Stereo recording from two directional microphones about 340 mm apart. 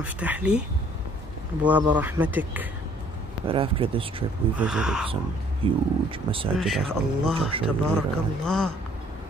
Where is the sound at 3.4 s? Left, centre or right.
Centre.